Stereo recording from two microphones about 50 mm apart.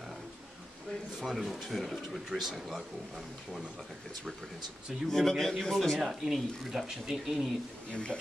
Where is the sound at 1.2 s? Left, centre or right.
Centre.